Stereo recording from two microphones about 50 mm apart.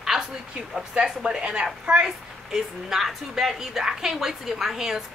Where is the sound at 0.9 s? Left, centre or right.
Centre.